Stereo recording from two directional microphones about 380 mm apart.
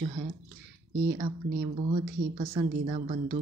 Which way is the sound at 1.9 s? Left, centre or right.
Centre.